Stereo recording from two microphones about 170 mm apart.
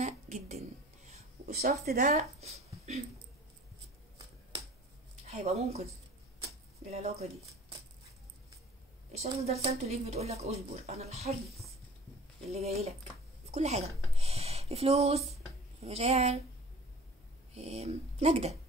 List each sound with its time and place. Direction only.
0.0 s a sound: 45° right (ahead or behind)
1.6 s speech: 60° right (ahead or behind); by 3.0 s 40° right (ahead or behind)
5.2 s speech: 40° right (ahead or behind)
6.4 s a sound: 40° right (ahead or behind)
9.1 s speech: 40° right (ahead or behind)
11.4 s a woman's voice: centre (ahead or behind)
12.4 s speech: 40° right (ahead or behind)
13.5 s a sound: 40° right (ahead or behind)
15.8 s speech: 40° right (ahead or behind)
17.6 s speech: 40° right (ahead or behind)